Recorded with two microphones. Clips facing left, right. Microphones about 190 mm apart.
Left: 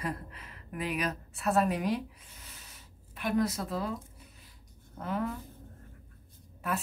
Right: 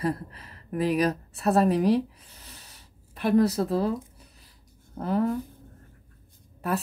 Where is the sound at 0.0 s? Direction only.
35° right (ahead or behind).